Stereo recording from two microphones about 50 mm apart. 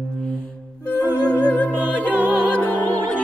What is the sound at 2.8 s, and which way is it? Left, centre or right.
Music, left.